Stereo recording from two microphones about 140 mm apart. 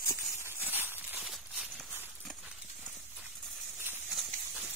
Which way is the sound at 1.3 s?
Centre (ahead or behind).